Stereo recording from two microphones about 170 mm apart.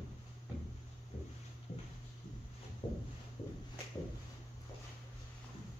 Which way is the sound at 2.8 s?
30° left (ahead or behind).